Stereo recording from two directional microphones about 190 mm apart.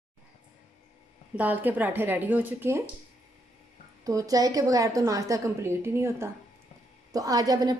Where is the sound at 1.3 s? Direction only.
10° right (ahead or behind).